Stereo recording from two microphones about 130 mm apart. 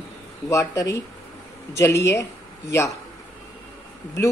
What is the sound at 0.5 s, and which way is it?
Speech, 25° left (ahead or behind).